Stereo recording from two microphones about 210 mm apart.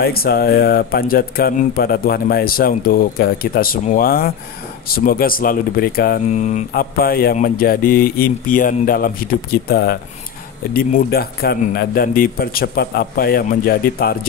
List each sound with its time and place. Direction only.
0.0 s speech: 45° left (ahead or behind)